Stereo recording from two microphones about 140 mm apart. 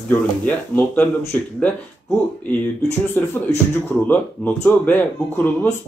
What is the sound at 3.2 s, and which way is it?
Speech, 15° left (ahead or behind).